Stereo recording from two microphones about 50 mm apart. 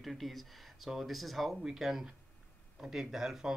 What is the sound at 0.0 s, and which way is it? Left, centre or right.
Speech, centre.